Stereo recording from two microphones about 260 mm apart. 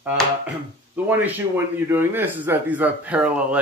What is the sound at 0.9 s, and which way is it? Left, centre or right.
A man's voice, centre.